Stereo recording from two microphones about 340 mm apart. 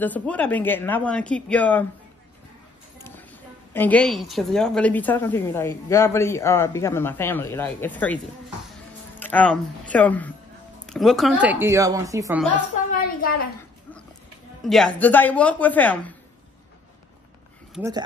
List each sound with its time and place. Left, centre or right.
0.0 s a woman's voice: centre
3.0 s a woman's voice: centre
9.2 s a woman's voice: centre
13.0 s a woman's voice: left
14.6 s a woman's voice: centre
17.7 s speech: centre